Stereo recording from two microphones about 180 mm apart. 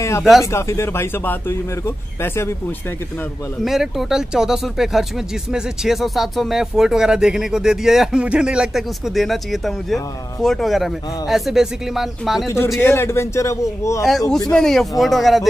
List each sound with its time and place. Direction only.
0.2 s speech: centre (ahead or behind)
0.5 s a man's voice: 15° left (ahead or behind)
3.6 s speech: centre (ahead or behind)
12.4 s a man's voice: 15° left (ahead or behind)
14.5 s speech: 5° left (ahead or behind)